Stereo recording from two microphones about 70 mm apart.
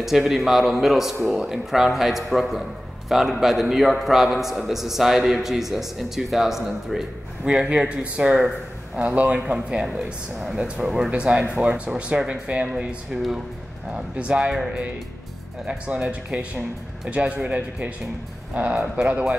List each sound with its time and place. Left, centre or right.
0.0 s a man's voice: centre
18.8 s speech: centre